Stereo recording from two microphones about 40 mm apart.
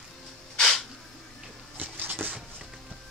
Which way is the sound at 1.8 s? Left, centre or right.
Right.